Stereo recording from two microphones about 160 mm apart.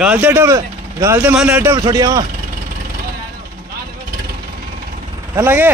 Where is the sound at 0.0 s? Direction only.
10° right (ahead or behind).